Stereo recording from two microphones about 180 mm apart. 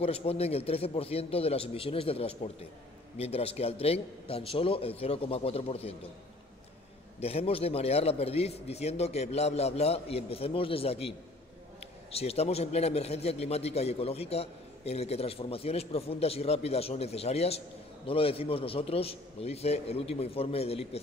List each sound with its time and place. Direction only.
0.0 s a man's voice: 35° left (ahead or behind)
7.2 s a man's voice: 35° left (ahead or behind)